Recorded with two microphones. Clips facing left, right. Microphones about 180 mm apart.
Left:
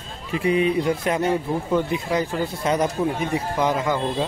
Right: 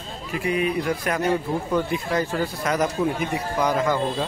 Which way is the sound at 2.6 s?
30° left (ahead or behind).